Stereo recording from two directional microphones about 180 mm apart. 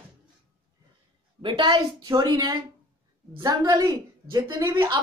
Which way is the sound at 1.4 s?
25° right (ahead or behind).